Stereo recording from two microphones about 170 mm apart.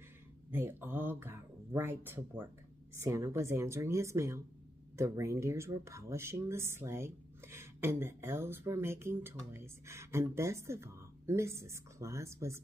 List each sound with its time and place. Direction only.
0.5 s speech: 10° right (ahead or behind)